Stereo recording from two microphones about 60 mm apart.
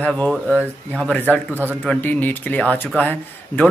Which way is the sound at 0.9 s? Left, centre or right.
Centre.